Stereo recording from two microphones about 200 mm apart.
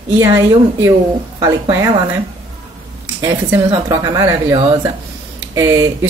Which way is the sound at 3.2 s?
15° right (ahead or behind).